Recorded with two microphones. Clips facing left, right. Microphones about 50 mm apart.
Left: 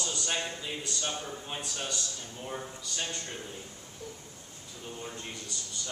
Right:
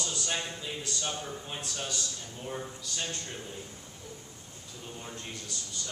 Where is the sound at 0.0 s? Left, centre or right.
Centre.